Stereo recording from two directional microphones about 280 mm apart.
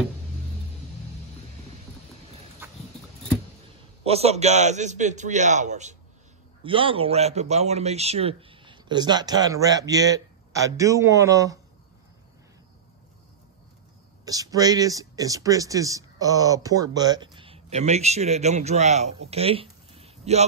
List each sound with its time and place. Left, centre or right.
2.6 s a sound: centre
4.0 s a man's voice: right
14.2 s speech: centre